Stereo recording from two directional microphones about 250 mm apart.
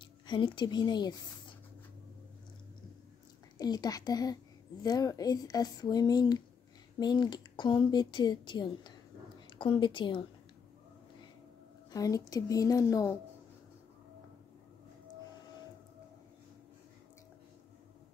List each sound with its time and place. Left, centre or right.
0.3 s a woman's voice: centre
3.5 s a woman's voice: centre
11.9 s a woman's voice: centre